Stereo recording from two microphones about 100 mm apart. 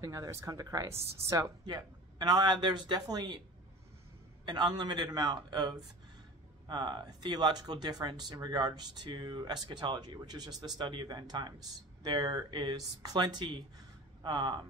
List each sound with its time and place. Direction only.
0.0 s speech: 35° right (ahead or behind)
1.7 s speech: 50° right (ahead or behind)
4.5 s speech: 45° right (ahead or behind)